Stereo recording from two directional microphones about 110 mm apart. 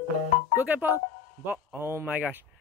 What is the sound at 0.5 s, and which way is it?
A man's voice, 15° right (ahead or behind).